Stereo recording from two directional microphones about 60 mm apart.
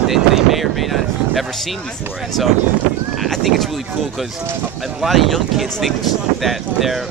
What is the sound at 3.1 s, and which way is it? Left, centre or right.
Speech, centre.